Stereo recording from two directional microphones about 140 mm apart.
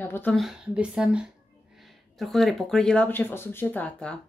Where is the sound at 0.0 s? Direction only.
15° left (ahead or behind).